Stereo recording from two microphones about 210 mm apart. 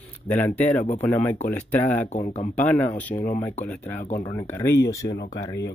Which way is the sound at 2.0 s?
35° left (ahead or behind).